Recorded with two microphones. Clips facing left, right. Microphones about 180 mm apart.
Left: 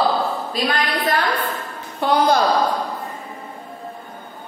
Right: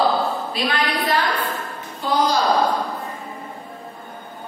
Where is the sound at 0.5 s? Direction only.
45° left (ahead or behind).